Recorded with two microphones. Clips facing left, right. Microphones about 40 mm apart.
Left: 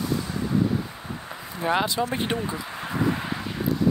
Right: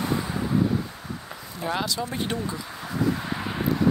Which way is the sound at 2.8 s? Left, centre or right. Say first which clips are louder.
Even; left.